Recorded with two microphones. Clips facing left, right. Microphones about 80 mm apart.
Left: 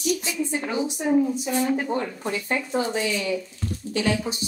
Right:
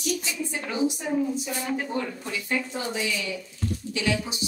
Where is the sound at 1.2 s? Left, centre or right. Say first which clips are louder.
Left 5 dB; centre.